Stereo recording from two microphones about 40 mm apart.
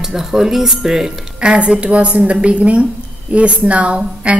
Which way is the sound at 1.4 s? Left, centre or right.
Right.